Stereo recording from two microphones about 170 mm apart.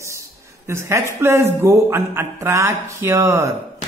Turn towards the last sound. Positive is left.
turn(degrees=-15)  # may be behind; listen again after turning